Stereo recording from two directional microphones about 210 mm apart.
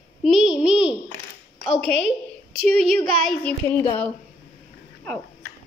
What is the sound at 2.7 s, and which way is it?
A woman's voice, centre (ahead or behind).